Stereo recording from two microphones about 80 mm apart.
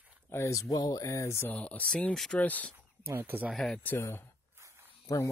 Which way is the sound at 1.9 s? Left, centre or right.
Centre.